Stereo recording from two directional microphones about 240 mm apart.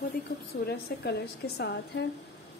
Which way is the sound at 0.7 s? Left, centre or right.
Left.